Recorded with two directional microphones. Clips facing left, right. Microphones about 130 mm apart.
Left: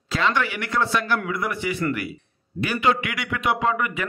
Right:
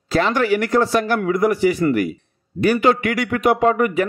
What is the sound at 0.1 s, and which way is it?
A man's voice, 40° right (ahead or behind).